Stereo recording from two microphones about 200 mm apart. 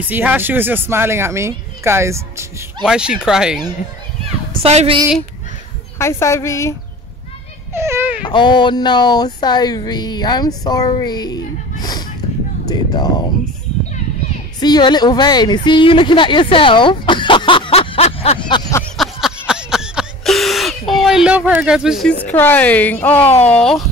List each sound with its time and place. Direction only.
0.1 s speech: 10° right (ahead or behind)
4.6 s a woman's voice: 30° right (ahead or behind)
5.9 s a woman's voice: 15° left (ahead or behind)
7.7 s baby cry: 15° right (ahead or behind)
8.3 s speech: 25° left (ahead or behind)
14.6 s a woman's voice: 20° left (ahead or behind)
18.9 s a sound: 5° right (ahead or behind)
23.3 s a woman's voice: 5° left (ahead or behind)